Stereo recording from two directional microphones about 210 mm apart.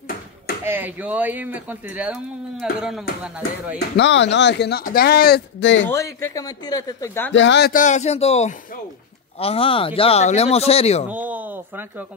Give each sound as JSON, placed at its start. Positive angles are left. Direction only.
{"t": 0.7, "sound": "speech", "side_deg": -10}
{"t": 3.9, "sound": "speech", "side_deg": 55}
{"t": 5.9, "sound": "a man's voice", "side_deg": 15}
{"t": 7.3, "sound": "speech", "side_deg": 55}
{"t": 7.7, "sound": "speech", "side_deg": 35}
{"t": 11.1, "sound": "a sound", "side_deg": -10}